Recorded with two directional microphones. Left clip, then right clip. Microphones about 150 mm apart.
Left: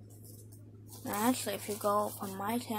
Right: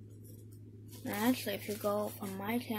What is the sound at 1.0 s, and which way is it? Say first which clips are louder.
Speech: left 2 dB; 10° right (ahead or behind).